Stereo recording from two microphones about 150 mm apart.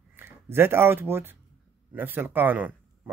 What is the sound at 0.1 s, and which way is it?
A man's voice, 15° right (ahead or behind).